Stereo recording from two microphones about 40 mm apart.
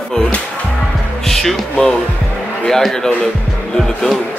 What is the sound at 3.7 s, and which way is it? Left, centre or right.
Speech, centre.